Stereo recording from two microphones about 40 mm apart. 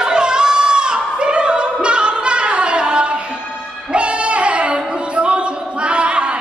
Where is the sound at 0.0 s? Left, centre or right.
Right.